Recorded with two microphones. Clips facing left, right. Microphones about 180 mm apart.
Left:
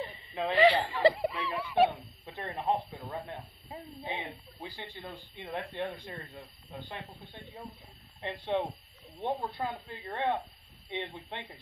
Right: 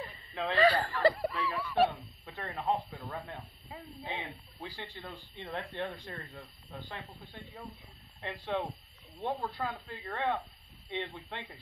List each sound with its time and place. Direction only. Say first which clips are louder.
0.3 s speech: left 2 dB; 15° left (ahead or behind)
8.5 s speech: left 4 dB; 20° left (ahead or behind)